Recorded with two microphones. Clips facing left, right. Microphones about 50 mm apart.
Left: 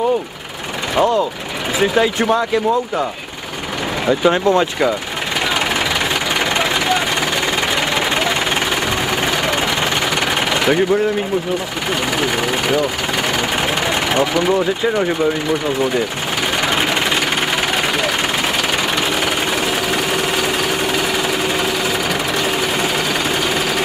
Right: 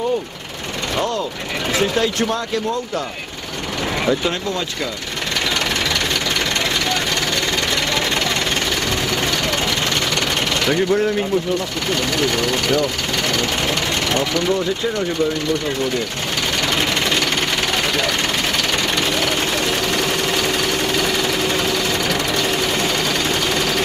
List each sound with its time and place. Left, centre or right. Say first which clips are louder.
0.9 s a sound: left 7 dB; centre
1.8 s speech: left 4 dB; centre
4.2 s speech: left 8 dB; left
6.5 s jackhammer: left 4 dB; centre
10.5 s a sound: left 3 dB; centre
12.2 s speech: left 1 dB; centre
14.1 s speech: left 4 dB; centre
16.6 s jackhammer: left 2 dB; centre
19.9 s jackhammer: left 2 dB; centre